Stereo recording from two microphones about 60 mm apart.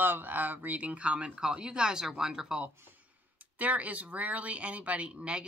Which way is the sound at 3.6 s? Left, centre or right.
Right.